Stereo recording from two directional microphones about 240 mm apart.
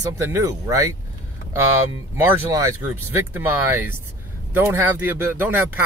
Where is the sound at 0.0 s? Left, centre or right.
Centre.